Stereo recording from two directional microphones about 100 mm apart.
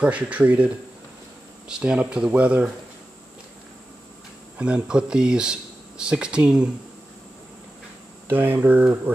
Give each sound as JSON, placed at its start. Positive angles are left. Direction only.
{"t": 0.0, "sound": "speech", "side_deg": -15}
{"t": 1.7, "sound": "speech", "side_deg": -10}
{"t": 4.6, "sound": "speech", "side_deg": -10}
{"t": 8.3, "sound": "speech", "side_deg": -20}